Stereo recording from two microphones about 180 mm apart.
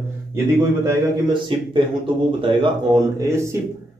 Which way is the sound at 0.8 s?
25° right (ahead or behind).